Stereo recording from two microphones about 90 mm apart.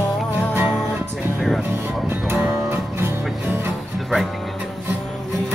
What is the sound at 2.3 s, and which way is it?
Music, 25° right (ahead or behind).